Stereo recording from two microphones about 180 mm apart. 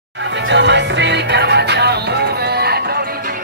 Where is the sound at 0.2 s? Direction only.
85° right.